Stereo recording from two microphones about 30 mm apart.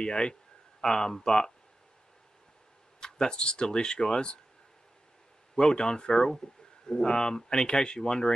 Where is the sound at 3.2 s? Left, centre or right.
Left.